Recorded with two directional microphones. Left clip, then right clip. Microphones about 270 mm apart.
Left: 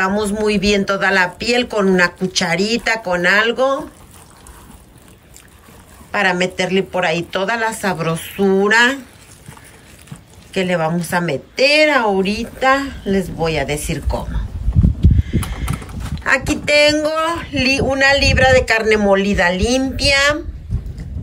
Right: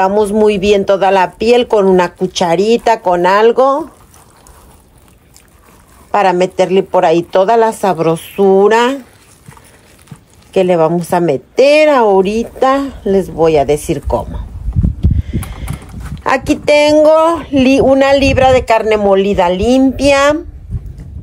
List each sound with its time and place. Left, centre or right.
0.0 s speech: centre
6.1 s speech: centre
10.5 s a woman's voice: centre
15.0 s horse: centre
16.2 s speech: centre